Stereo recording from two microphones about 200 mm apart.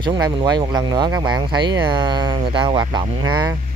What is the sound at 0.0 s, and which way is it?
Speech, 25° right (ahead or behind).